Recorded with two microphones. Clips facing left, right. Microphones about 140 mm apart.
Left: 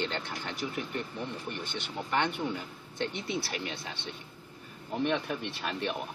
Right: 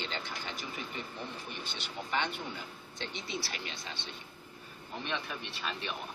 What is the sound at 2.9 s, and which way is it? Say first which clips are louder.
Speech: left 7 dB; 60° left (ahead or behind).